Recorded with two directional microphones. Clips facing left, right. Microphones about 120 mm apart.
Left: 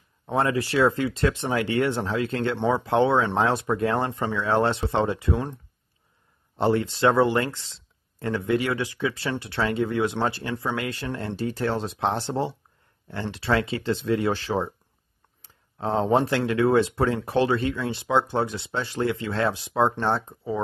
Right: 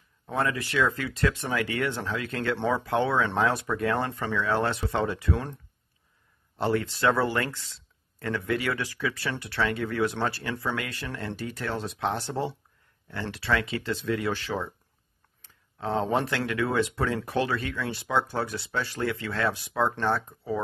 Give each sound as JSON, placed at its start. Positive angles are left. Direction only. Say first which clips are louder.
{"t": 0.3, "sound": "speech", "louder": "left 5 dB", "side_deg": 30}
{"t": 6.5, "sound": "speech", "louder": "left 4 dB", "side_deg": 25}